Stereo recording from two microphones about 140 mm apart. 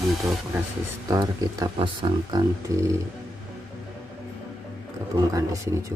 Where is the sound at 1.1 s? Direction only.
25° right (ahead or behind).